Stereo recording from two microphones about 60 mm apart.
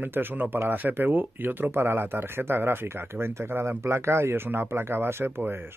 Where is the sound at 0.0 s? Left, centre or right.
Right.